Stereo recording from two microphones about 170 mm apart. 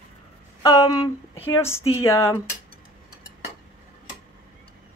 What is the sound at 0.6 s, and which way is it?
Speech, 25° left (ahead or behind).